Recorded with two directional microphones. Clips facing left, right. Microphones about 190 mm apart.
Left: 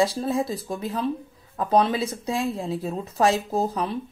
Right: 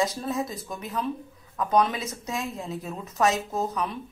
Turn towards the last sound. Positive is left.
turn(degrees=30)  # may be behind; listen again after turning